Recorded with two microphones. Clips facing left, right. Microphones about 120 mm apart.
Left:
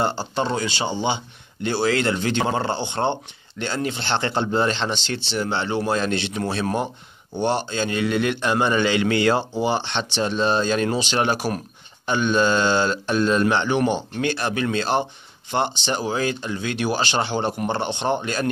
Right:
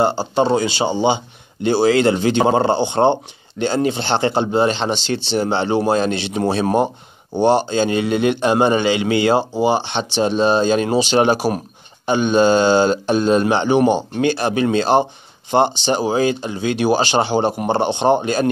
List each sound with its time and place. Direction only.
0.0 s a man's voice: 15° right (ahead or behind)
7.4 s a man's voice: 20° right (ahead or behind)